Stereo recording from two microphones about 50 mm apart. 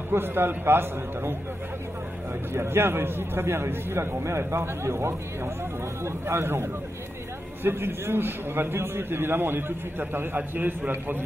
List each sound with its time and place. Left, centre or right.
0.1 s a man's voice: right
2.5 s a man's voice: right